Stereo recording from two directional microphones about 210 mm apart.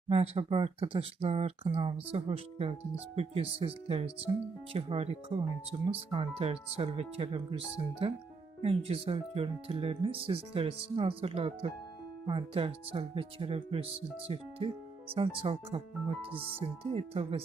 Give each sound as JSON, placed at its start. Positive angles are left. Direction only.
{"t": 0.1, "sound": "speech", "side_deg": -30}